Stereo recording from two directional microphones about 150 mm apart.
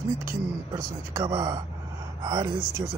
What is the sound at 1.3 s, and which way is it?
Speech, 20° right (ahead or behind).